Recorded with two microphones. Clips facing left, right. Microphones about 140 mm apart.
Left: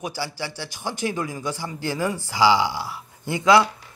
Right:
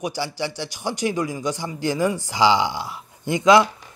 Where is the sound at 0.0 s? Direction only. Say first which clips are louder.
Right 4 dB; 20° right (ahead or behind).